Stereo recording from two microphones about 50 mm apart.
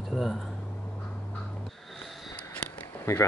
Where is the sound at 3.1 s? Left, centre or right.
Left.